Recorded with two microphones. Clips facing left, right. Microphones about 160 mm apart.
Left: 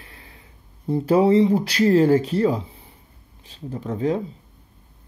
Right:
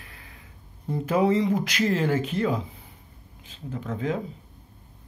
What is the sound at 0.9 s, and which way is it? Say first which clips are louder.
Speech: left 6 dB; 35° left (ahead or behind).